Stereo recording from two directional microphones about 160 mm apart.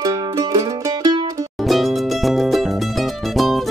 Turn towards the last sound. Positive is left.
turn(degrees=0)  # may be behind; listen again after turning